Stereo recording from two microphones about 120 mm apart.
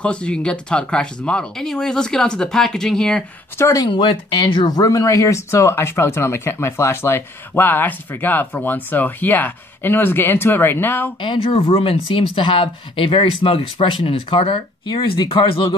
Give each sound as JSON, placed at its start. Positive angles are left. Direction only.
{"t": 0.0, "sound": "speech", "side_deg": 10}
{"t": 3.5, "sound": "speech", "side_deg": 25}
{"t": 3.9, "sound": "speech", "side_deg": 45}
{"t": 11.1, "sound": "speech", "side_deg": 45}